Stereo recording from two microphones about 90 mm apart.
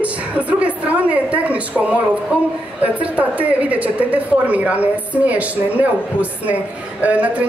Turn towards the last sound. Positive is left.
turn(degrees=-15)  # may be behind; listen again after turning